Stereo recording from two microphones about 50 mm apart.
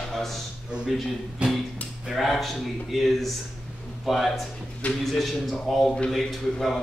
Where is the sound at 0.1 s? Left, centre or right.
Centre.